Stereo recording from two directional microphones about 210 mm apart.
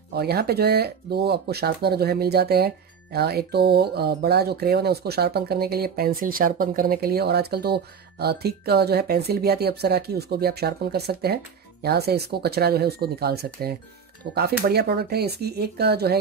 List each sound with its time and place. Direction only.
0.1 s speech: 50° right (ahead or behind)